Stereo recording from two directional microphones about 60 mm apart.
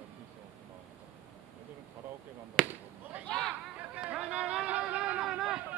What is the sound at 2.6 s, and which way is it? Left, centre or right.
Basketball bounce, centre.